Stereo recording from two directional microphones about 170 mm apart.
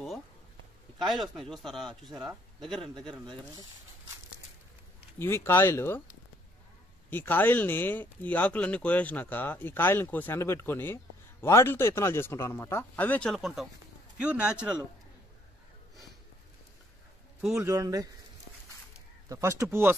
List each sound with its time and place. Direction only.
0.9 s speech: centre (ahead or behind)
5.2 s speech: 15° left (ahead or behind)
7.1 s speech: 10° left (ahead or behind); by 14.8 s 5° right (ahead or behind)
17.6 s speech: 20° right (ahead or behind)
19.2 s speech: 20° right (ahead or behind)